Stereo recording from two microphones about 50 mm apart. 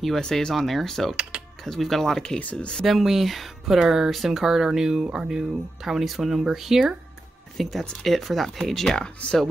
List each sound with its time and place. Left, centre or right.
0.2 s speech: centre
0.6 s speech: centre
2.9 s speech: centre
9.0 s speech: centre